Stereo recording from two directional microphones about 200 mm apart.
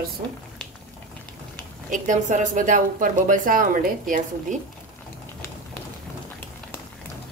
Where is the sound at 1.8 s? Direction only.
40° right (ahead or behind).